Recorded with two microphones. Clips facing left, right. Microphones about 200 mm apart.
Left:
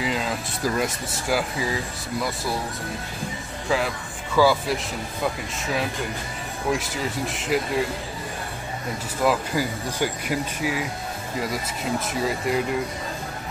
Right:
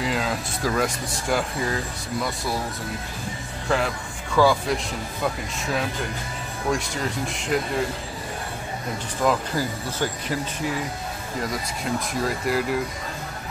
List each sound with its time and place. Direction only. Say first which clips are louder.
0.0 s speech: right 1 dB; centre (ahead or behind)
3.6 s speech: even; centre (ahead or behind)
6.7 s speech: even; 5° left (ahead or behind)
9.2 s speech: left 1 dB; 10° left (ahead or behind)
11.8 s speech: even; 5° left (ahead or behind)